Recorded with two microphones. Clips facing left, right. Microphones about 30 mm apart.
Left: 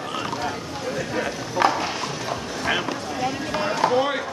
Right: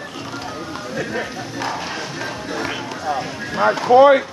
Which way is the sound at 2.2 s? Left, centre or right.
Right.